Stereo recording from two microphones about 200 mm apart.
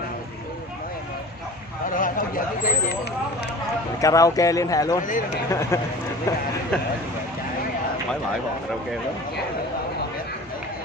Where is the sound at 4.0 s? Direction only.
15° left (ahead or behind).